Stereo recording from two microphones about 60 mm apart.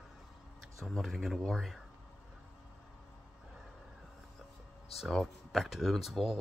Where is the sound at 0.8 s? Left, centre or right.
Centre.